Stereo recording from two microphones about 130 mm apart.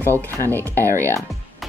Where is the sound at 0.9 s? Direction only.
20° right (ahead or behind).